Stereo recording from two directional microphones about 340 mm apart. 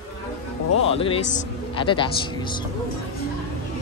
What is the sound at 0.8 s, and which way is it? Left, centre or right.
Speech, centre.